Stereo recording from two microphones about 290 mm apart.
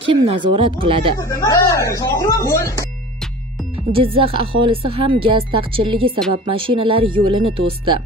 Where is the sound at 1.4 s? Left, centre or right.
Centre.